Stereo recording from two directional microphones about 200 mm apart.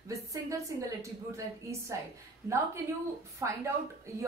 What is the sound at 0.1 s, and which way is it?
A woman's voice, 15° right (ahead or behind).